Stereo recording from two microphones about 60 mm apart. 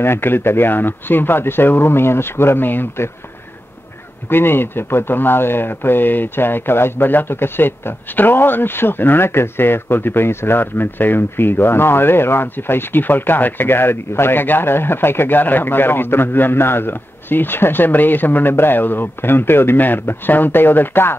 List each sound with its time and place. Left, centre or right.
0.0 s speech: left
4.3 s speech: left